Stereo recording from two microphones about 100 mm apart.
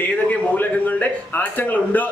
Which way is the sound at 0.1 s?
15° left (ahead or behind).